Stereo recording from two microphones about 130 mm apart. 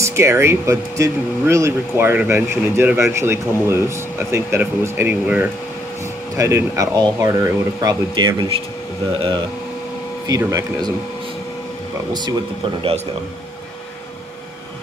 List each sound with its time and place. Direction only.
0.0 s speech: 20° right (ahead or behind); by 8.6 s 40° right (ahead or behind)
10.2 s speech: 30° right (ahead or behind)
12.1 s speech: 30° right (ahead or behind)